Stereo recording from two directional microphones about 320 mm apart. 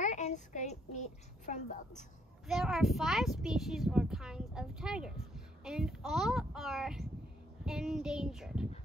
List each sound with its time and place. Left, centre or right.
0.0 s child singing: left
2.4 s speech: centre